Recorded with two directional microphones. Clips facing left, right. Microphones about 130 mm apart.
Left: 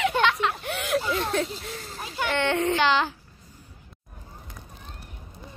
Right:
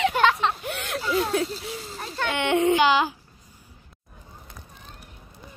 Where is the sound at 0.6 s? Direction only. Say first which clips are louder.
Left 3 dB; centre (ahead or behind).